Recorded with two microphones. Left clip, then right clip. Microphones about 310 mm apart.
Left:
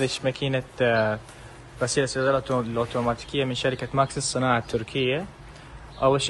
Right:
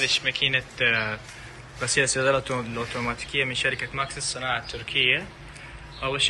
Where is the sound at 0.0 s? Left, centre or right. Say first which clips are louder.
Right 3 dB; centre.